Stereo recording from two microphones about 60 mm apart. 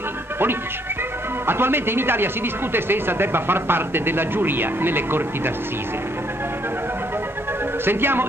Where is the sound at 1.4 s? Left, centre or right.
Right.